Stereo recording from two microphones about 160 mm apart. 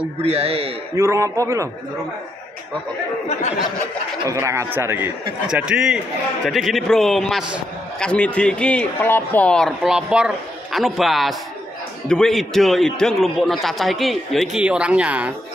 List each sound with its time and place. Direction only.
0.2 s a man's voice: 40° right (ahead or behind)
0.9 s a man's voice: 20° right (ahead or behind)
4.3 s a man's voice: 20° right (ahead or behind)